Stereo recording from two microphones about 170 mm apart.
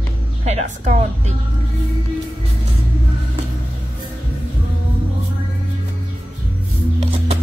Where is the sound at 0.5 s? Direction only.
40° right (ahead or behind).